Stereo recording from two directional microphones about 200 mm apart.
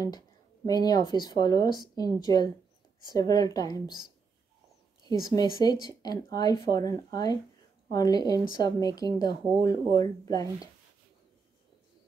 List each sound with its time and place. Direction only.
0.7 s a woman's voice: 20° left (ahead or behind)
5.3 s a woman's voice: 20° left (ahead or behind)